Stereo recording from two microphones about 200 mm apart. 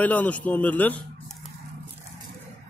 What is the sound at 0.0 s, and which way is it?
Speech, 10° left (ahead or behind).